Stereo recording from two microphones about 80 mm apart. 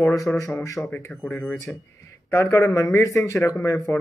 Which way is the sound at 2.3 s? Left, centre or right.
Left.